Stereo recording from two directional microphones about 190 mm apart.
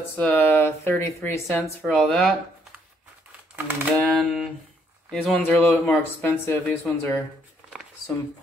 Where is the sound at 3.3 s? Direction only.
10° right (ahead or behind).